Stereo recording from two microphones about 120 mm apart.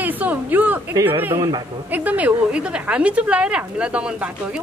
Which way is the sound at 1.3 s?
35° right (ahead or behind).